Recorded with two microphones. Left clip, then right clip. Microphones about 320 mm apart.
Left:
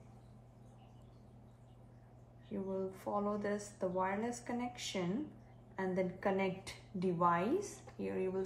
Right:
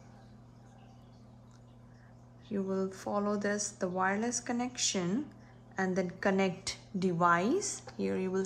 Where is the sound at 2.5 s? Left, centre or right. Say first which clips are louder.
Right 6 dB; right.